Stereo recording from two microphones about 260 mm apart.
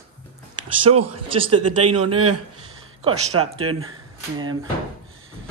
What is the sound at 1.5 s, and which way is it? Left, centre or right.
Speech, right.